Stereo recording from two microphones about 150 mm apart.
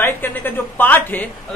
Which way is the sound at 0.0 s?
15° left (ahead or behind).